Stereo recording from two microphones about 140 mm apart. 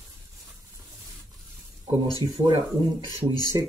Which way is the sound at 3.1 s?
30° left (ahead or behind).